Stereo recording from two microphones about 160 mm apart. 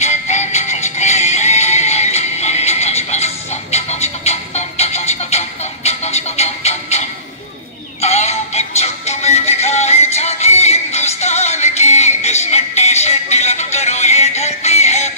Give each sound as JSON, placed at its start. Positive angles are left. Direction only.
{"t": 0.0, "sound": "music", "side_deg": 45}